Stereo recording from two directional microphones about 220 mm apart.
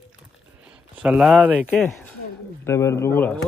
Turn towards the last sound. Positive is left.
turn(degrees=10)  # may be behind; listen again after turning